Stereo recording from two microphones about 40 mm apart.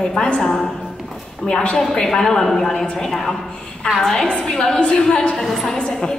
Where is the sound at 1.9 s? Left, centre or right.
Centre.